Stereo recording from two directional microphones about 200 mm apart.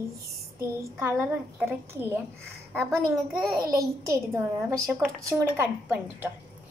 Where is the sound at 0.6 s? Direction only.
10° right (ahead or behind).